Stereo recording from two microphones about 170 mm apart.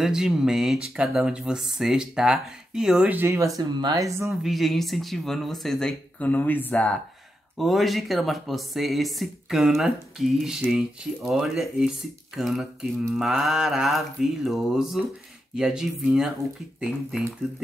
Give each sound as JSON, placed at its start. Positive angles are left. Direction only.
{"t": 0.0, "sound": "speech", "side_deg": -5}
{"t": 4.3, "sound": "speech", "side_deg": 0}